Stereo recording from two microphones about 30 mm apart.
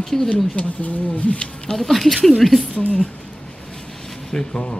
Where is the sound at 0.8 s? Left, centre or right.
Left.